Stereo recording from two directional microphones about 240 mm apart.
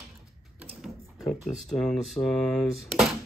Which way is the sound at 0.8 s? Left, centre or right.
Centre.